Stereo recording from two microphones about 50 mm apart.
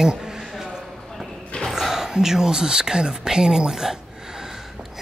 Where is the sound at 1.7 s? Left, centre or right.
Centre.